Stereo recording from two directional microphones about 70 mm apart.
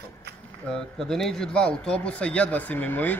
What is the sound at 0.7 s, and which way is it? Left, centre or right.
Speech, centre.